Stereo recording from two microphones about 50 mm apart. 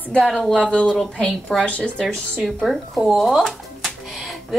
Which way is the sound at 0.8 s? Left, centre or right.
Centre.